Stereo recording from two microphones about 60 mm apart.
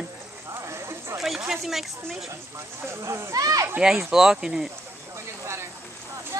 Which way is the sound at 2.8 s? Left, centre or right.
Right.